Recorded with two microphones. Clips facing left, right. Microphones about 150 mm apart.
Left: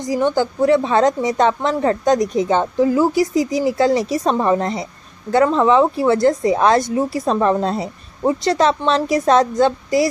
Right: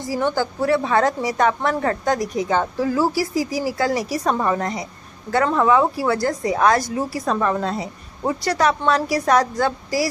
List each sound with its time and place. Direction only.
0.0 s a woman's voice: 20° left (ahead or behind)